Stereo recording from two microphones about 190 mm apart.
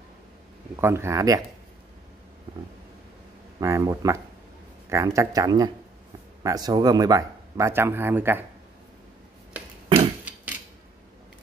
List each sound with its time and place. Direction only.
0.7 s speech: 15° right (ahead or behind)
3.5 s speech: 15° right (ahead or behind)